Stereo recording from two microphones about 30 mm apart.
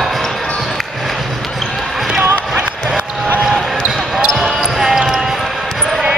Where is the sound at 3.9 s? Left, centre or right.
Centre.